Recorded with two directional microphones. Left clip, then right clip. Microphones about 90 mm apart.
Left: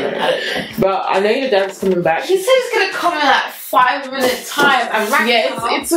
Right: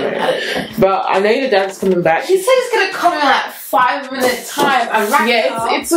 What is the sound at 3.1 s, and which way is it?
Speech, 15° right (ahead or behind).